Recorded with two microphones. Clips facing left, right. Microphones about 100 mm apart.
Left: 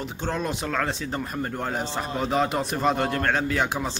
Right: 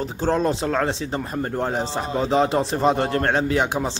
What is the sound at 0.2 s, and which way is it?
A man's voice, 30° right (ahead or behind).